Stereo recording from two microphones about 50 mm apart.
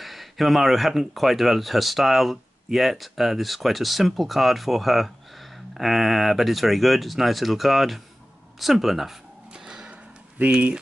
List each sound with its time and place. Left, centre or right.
0.0 s speech: centre
9.5 s a sound: centre
10.4 s speech: right